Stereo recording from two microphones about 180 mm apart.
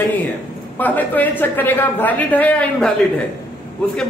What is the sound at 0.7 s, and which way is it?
A man's voice, 10° left (ahead or behind).